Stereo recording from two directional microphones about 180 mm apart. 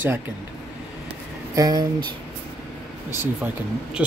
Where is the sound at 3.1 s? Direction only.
10° right (ahead or behind).